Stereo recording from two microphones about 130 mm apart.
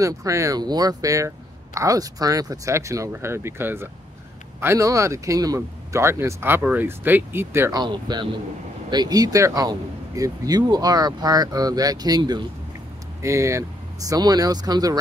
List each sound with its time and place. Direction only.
0.0 s speech: 25° right (ahead or behind)
7.7 s speech: 35° right (ahead or behind)
13.2 s speech: 20° right (ahead or behind)